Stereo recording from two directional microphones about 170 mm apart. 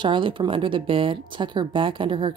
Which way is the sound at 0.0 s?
30° right (ahead or behind).